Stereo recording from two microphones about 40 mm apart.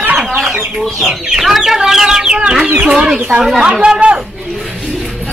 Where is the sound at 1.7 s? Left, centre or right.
Centre.